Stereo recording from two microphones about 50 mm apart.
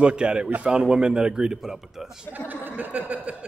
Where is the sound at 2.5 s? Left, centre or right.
Right.